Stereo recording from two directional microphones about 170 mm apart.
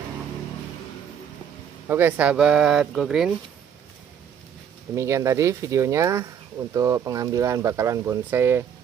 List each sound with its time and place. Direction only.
1.9 s speech: 10° right (ahead or behind)
4.9 s speech: 15° right (ahead or behind)